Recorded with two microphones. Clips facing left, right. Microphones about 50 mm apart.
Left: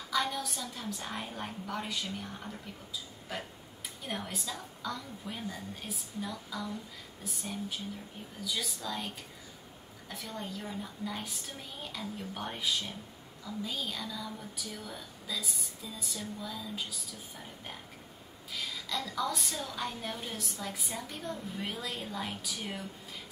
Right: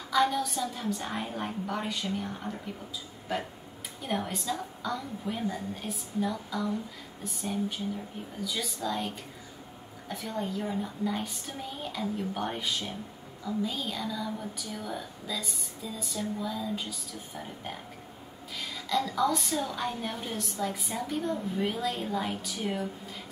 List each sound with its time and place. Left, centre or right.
0.1 s a woman's voice: centre
4.0 s a woman's voice: centre
10.6 s a woman's voice: centre
11.1 s a woman's voice: centre